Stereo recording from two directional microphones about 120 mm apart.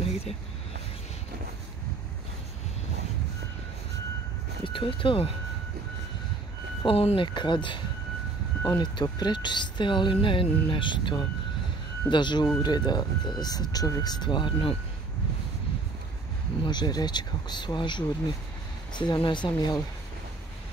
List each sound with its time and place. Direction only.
0.0 s a sound: 55° left (ahead or behind)
4.6 s speech: 45° left (ahead or behind)
6.8 s speech: 50° left (ahead or behind)
7.3 s speech: 40° left (ahead or behind)
16.6 s speech: 35° left (ahead or behind)
19.2 s speech: 40° left (ahead or behind)